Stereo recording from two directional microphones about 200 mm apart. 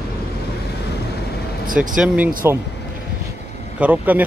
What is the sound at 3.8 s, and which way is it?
Speech, 10° right (ahead or behind).